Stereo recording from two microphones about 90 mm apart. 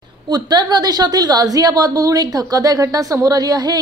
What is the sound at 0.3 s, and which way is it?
A woman's voice, 55° right (ahead or behind).